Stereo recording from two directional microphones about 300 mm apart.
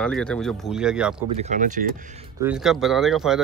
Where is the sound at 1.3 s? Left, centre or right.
Right.